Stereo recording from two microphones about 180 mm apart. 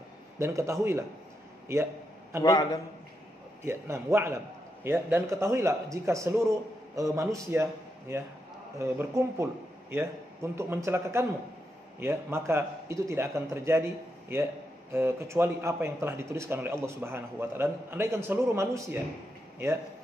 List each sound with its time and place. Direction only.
0.4 s a man's voice: 15° right (ahead or behind)
2.4 s a man's voice: 20° left (ahead or behind)
3.6 s a man's voice: 15° right (ahead or behind)